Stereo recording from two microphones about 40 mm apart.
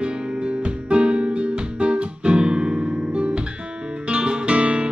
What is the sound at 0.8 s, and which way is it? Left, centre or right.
Music, right.